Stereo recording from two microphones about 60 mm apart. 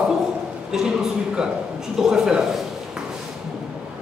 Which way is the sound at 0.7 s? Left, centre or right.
Centre.